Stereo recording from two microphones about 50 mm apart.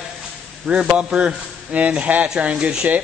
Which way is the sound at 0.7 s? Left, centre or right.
Right.